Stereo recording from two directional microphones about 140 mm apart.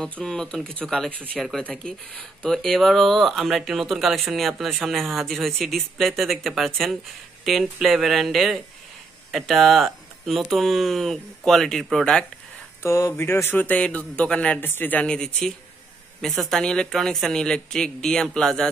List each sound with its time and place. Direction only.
0.0 s speech: 5° left (ahead or behind)
12.8 s a man's voice: 20° left (ahead or behind); by 18.7 s 5° left (ahead or behind)